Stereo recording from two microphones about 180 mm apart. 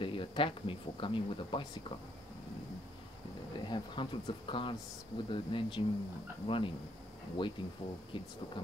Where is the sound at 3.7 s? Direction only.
25° left (ahead or behind).